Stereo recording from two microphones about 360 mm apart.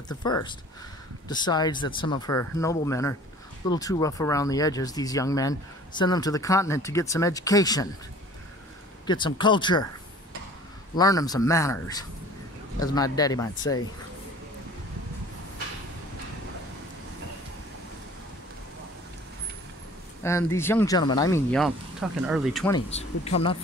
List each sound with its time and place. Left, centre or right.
0.2 s speech: centre
9.0 s speech: centre
11.0 s speech: centre
20.2 s speech: centre
22.8 s speech: centre